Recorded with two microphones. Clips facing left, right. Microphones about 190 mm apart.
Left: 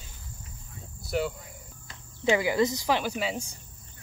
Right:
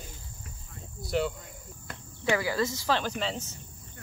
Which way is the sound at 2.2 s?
20° left (ahead or behind).